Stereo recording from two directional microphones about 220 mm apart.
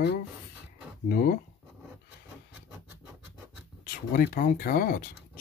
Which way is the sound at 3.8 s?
40° left (ahead or behind).